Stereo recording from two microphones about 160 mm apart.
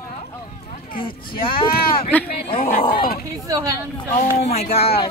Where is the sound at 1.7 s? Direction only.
70° left (ahead or behind).